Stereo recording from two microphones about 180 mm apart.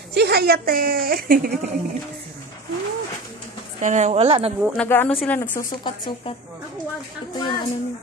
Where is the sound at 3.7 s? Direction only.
40° right (ahead or behind).